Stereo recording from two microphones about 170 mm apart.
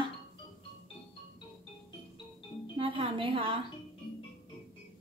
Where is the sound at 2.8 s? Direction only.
30° right (ahead or behind).